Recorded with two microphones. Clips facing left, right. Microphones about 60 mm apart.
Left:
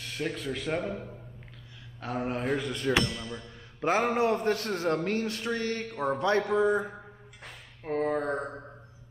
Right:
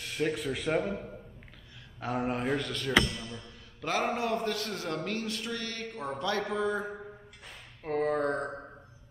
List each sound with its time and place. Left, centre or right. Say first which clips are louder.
0.0 s speech: right 2 dB; centre
2.6 s mantra: left 3 dB; centre
3.3 s a man's voice: left 4 dB; left
6.5 s mantra: left 6 dB; left
7.8 s speech: even; centre